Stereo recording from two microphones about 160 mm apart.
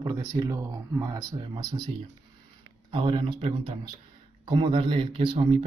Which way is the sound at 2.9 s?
30° right (ahead or behind).